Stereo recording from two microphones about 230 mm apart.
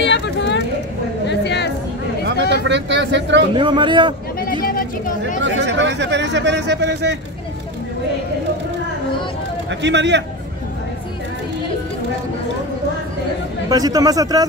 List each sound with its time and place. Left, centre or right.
0.0 s a sound: left
1.2 s chatter: left
2.5 s speech: right
3.5 s speech: right
4.4 s a sound: left
5.4 s speech: right
9.7 s speech: right
13.7 s a man's voice: centre